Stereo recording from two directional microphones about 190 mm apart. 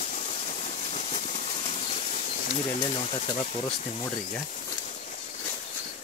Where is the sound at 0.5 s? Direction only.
35° left (ahead or behind).